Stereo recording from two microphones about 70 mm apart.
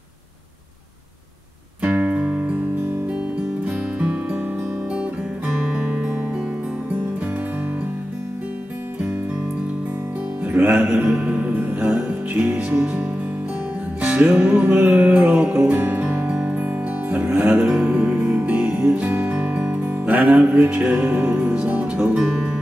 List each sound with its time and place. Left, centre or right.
1.8 s music: right
3.6 s music: centre
5.6 s music: centre
10.4 s music: right
11.1 s music: centre
14.0 s music: centre
17.6 s music: centre
22.2 s music: centre